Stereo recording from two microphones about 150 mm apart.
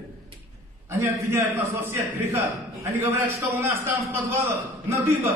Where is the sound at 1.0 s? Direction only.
20° right (ahead or behind).